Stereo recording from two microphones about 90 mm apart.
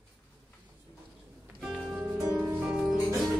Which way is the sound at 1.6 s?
10° right (ahead or behind).